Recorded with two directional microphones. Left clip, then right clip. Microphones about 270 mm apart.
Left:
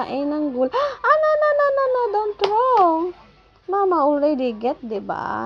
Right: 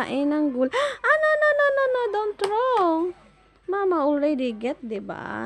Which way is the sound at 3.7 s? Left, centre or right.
Right.